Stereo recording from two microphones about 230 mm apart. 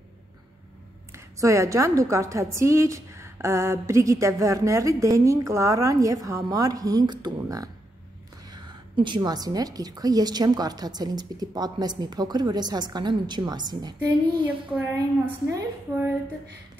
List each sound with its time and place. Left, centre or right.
1.1 s a woman's voice: centre